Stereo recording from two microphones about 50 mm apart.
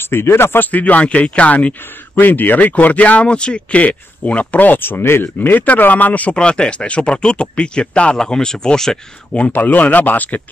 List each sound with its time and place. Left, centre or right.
0.0 s speech: left
0.6 s speech: left
2.1 s speech: left
6.3 s speech: centre
9.3 s speech: left
9.6 s speech: left